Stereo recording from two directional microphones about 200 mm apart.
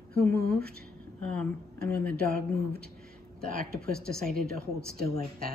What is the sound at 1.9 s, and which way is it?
Speech, 50° right (ahead or behind).